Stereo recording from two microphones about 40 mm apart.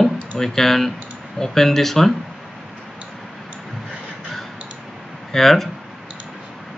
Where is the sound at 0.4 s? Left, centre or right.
Centre.